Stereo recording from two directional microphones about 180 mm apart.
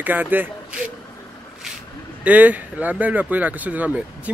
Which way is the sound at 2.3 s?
10° right (ahead or behind).